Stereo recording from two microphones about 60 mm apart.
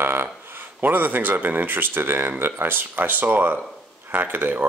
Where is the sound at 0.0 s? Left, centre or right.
Right.